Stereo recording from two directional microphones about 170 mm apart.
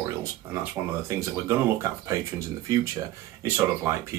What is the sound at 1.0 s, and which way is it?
Speech, 15° right (ahead or behind).